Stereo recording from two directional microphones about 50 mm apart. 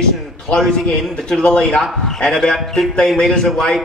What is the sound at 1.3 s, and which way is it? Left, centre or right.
A man's voice, centre.